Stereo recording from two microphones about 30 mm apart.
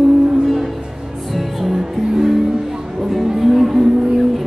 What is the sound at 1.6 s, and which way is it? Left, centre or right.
Music, centre.